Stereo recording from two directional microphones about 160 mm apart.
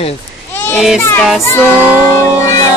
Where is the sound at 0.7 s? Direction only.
5° right (ahead or behind).